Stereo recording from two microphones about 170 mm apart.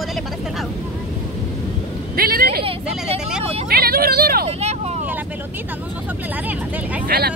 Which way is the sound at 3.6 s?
60° right (ahead or behind).